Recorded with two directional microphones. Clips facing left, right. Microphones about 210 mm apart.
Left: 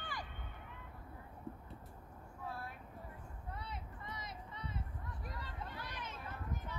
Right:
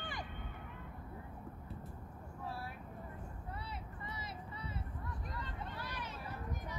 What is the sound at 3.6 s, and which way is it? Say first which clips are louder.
Vehicle: right 1 dB; 5° right (ahead or behind).